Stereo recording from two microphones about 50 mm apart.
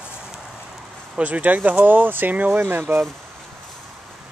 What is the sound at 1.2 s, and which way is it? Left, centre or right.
Speech, right.